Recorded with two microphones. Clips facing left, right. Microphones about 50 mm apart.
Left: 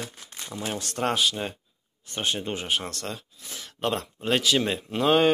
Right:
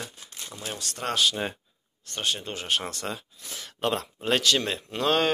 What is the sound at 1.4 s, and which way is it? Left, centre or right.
Speech, centre.